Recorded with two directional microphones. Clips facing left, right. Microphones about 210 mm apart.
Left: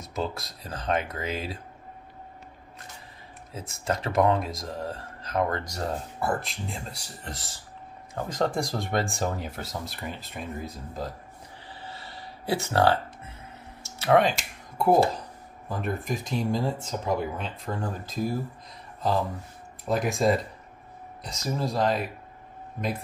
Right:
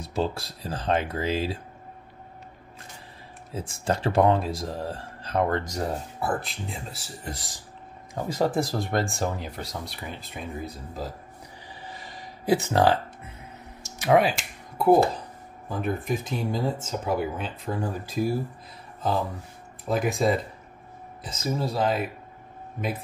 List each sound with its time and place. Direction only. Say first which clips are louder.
0.0 s speech: right 4 dB; 30° right (ahead or behind)
3.5 s speech: right 3 dB; 30° right (ahead or behind)
5.9 s speech: even; centre (ahead or behind)
11.8 s a sound: right 1 dB; 15° right (ahead or behind)
13.8 s computer keyboard: right 1 dB; 15° right (ahead or behind)
15.7 s speech: right 2 dB; centre (ahead or behind)
19.8 s speech: right 1 dB; centre (ahead or behind)